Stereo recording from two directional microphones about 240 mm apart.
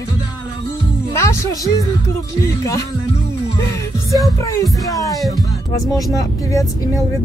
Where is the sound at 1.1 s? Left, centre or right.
Centre.